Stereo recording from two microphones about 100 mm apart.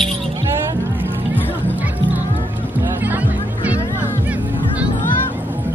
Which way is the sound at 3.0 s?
15° right (ahead or behind).